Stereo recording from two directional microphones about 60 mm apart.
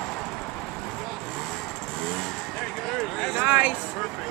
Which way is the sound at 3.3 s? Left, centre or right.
Right.